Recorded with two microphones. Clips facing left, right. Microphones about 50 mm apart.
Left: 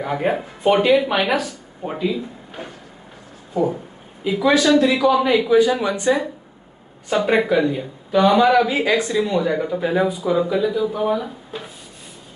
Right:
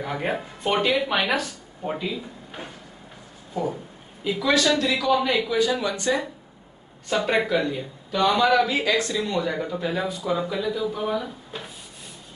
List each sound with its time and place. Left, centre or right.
0.0 s speech: centre
4.2 s speech: centre